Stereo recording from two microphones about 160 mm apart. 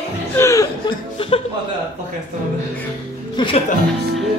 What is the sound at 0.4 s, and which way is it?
Chuckle, 20° left (ahead or behind).